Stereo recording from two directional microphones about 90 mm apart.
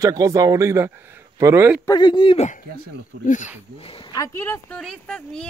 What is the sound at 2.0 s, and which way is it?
Speech, 65° left (ahead or behind).